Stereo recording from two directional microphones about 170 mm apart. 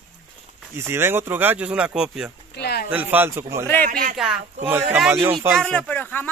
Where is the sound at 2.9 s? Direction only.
10° right (ahead or behind).